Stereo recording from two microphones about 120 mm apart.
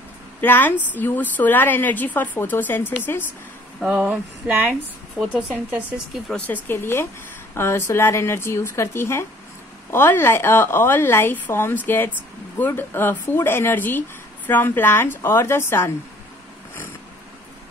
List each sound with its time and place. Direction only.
0.4 s a woman's voice: 15° left (ahead or behind)
3.8 s speech: 10° right (ahead or behind)
6.2 s a woman's voice: 10° left (ahead or behind)